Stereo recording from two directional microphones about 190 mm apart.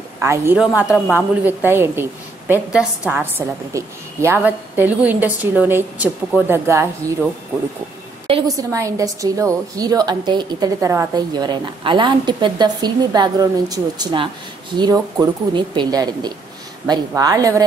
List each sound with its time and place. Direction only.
0.2 s a woman's voice: 15° right (ahead or behind)
0.6 s a woman's voice: 5° right (ahead or behind)
8.3 s a woman's voice: 20° right (ahead or behind)